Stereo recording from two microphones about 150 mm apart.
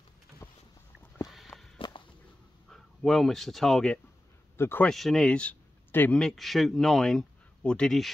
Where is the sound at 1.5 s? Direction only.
5° left (ahead or behind).